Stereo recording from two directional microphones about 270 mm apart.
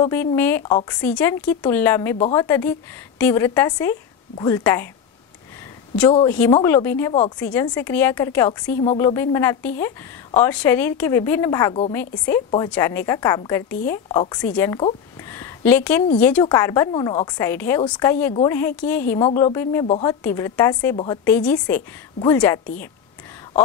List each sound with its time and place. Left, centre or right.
0.0 s a woman's voice: centre
6.2 s a woman's voice: centre
21.2 s a woman's voice: centre